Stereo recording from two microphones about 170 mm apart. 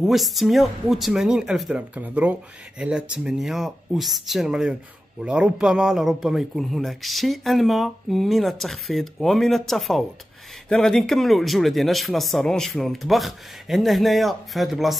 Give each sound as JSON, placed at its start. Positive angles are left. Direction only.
{"t": 0.0, "sound": "a man's voice", "side_deg": 0}